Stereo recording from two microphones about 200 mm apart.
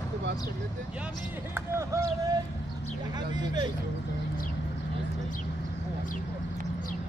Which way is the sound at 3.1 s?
20° right (ahead or behind).